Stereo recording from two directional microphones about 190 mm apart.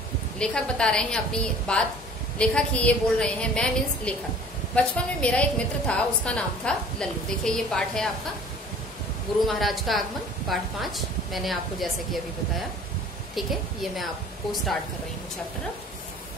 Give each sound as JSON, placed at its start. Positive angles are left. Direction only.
{"t": 0.4, "sound": "a woman's voice", "side_deg": 5}
{"t": 9.5, "sound": "a woman's voice", "side_deg": 0}